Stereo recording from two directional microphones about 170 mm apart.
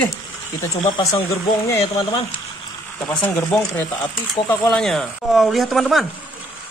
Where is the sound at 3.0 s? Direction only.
10° left (ahead or behind).